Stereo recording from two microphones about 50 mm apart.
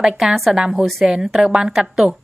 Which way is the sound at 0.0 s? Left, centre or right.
Centre.